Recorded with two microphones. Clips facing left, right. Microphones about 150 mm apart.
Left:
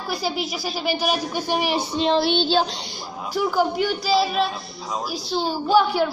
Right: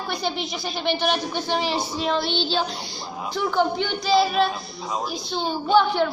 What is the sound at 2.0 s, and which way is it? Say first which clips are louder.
Child singing: left 6 dB; 25° left (ahead or behind).